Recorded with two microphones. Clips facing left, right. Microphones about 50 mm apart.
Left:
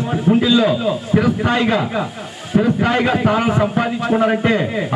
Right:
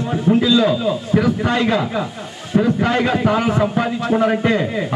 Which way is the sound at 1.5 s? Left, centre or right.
Left.